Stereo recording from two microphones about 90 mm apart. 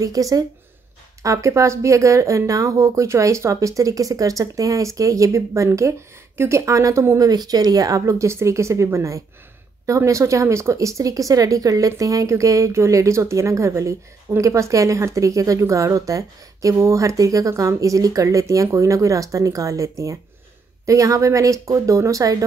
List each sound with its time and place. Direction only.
0.0 s speech: 40° right (ahead or behind)